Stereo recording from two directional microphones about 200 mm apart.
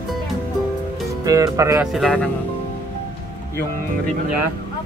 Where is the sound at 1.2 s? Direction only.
15° right (ahead or behind).